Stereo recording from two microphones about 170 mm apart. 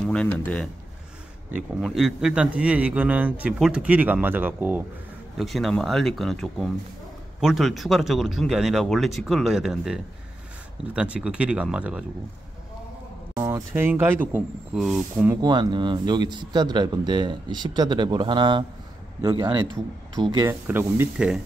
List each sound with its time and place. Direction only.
0.0 s a sound: 5° left (ahead or behind)
1.5 s a man's voice: 5° right (ahead or behind)
5.4 s a man's voice: centre (ahead or behind)
13.4 s a man's voice: 15° right (ahead or behind)
14.8 s speech: centre (ahead or behind)
15.4 s speech: 25° right (ahead or behind)
20.4 s a man's voice: 15° right (ahead or behind)